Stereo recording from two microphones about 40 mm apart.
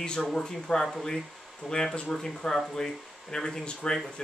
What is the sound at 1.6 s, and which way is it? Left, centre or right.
Speech, centre.